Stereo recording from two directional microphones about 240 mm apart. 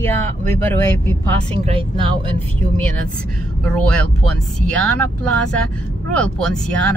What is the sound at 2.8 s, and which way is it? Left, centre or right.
Speech, centre.